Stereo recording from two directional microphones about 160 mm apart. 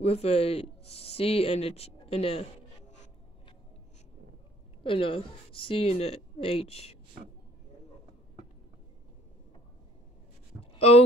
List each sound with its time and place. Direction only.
0.0 s speech: 40° left (ahead or behind)
4.8 s speech: 35° left (ahead or behind)
10.6 s a sound: 40° left (ahead or behind)